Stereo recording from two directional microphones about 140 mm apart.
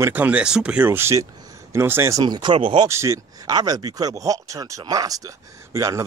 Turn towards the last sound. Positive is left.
turn(degrees=-20)  # may be behind; listen again after turning